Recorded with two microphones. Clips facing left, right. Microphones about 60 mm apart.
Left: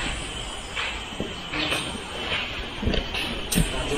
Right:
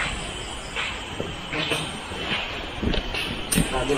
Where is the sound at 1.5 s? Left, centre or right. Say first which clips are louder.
Right 1 dB; centre.